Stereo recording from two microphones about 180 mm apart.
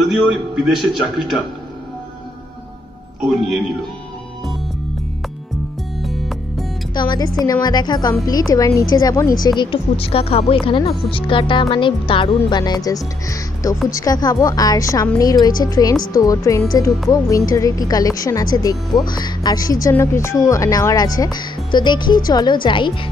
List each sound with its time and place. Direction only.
0.0 s a man's voice: centre (ahead or behind)
3.2 s a man's voice: centre (ahead or behind)
6.0 s music: centre (ahead or behind)
7.0 s a woman's voice: 25° left (ahead or behind)
9.6 s a woman's voice: 30° left (ahead or behind)